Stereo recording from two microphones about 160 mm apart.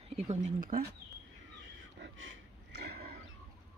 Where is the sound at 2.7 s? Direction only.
80° right.